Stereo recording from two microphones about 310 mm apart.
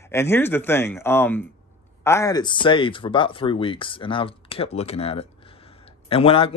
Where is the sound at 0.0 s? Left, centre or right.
Centre.